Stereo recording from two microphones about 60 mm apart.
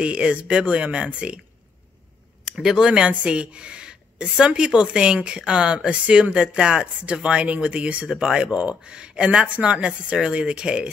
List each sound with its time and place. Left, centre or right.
0.0 s speech: centre
2.4 s speech: centre